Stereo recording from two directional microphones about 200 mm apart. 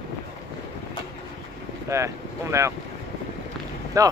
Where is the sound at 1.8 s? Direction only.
15° right (ahead or behind).